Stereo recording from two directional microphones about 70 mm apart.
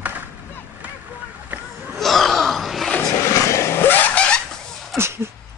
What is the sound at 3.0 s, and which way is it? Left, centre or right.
Vehicle, left.